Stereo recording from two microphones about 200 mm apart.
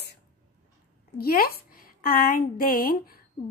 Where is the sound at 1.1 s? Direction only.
50° left (ahead or behind).